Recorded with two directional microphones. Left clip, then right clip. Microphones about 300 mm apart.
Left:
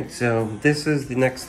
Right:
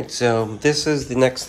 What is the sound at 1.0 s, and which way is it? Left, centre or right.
Speech, centre.